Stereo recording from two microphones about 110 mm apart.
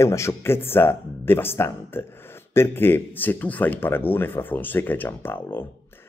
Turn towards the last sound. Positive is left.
turn(degrees=20)  # may be behind; listen again after turning